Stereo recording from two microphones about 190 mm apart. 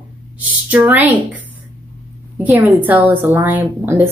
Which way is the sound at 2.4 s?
10° right (ahead or behind).